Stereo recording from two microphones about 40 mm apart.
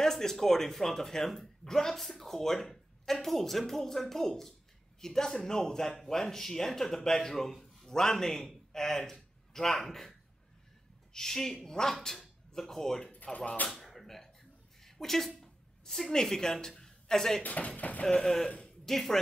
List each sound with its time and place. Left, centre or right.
0.0 s a man's voice: centre
11.1 s speech: centre
13.1 s a sound: left
13.7 s speech: centre
14.8 s a sound: centre
17.4 s speech: left
18.0 s speech: centre